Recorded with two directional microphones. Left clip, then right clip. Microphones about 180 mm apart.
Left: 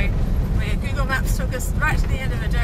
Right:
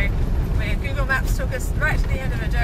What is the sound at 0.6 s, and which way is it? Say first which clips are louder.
Speech: right 1 dB; 20° left (ahead or behind).